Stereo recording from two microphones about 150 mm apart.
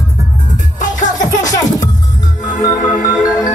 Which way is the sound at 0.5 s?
55° left (ahead or behind).